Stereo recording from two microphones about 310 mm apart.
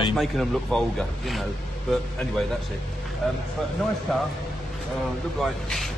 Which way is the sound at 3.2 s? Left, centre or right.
Centre.